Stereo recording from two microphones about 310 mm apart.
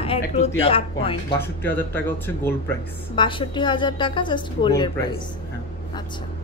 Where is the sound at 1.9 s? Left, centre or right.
Centre.